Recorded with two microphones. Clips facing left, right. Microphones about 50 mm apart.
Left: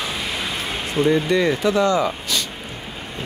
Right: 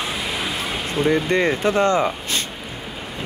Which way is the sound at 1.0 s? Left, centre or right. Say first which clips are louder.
Left 1 dB; right.